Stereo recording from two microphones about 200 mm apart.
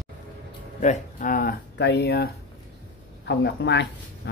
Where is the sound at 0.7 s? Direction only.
35° left (ahead or behind).